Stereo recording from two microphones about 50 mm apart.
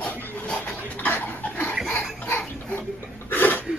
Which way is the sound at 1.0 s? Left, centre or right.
Left.